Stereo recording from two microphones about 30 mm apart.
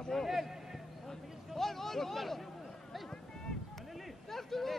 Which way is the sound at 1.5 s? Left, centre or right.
Centre.